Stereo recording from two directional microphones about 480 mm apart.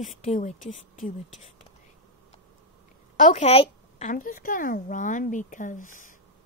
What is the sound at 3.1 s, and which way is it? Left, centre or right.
A woman's voice, centre.